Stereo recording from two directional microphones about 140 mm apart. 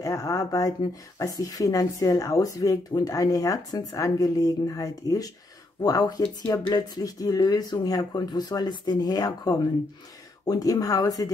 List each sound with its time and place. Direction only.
0.0 s speech: 25° left (ahead or behind)